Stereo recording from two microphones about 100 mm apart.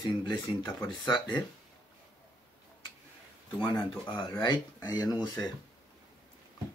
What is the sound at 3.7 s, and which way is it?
Speech, 50° left (ahead or behind).